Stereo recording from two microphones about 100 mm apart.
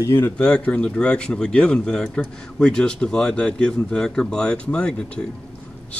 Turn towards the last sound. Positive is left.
turn(degrees=10)  # may be behind; listen again after turning